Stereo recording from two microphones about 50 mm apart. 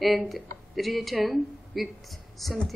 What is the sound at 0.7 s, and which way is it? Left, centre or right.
A woman's voice, centre.